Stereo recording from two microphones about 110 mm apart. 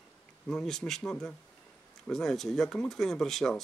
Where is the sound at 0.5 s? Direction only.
5° left (ahead or behind).